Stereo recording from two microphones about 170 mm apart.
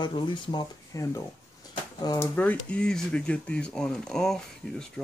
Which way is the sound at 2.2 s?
10° left (ahead or behind).